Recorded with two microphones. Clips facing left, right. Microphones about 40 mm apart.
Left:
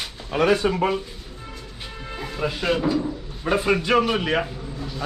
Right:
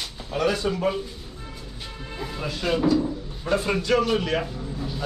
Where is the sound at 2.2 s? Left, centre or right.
Centre.